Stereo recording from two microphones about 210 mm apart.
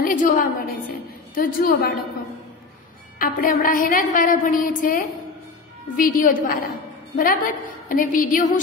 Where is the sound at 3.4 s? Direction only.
40° left (ahead or behind).